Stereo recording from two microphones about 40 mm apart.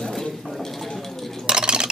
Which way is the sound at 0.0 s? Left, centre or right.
Centre.